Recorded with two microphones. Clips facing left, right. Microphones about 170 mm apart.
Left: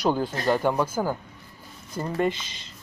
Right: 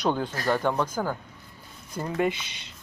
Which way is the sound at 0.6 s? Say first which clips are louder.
Left 2 dB; 10° left (ahead or behind).